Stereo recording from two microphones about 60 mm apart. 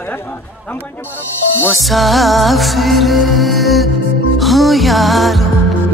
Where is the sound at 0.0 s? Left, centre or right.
Left.